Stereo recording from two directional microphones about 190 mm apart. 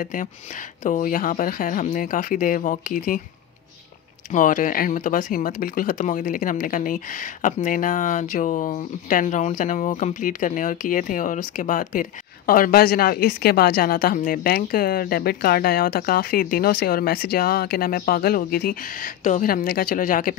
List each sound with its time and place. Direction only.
0.0 s speech: 45° left (ahead or behind)
4.3 s speech: 45° left (ahead or behind)